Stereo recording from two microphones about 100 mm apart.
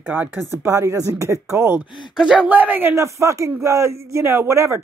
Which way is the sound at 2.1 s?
5° right (ahead or behind).